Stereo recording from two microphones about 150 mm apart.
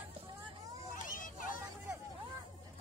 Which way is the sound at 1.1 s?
65° left (ahead or behind).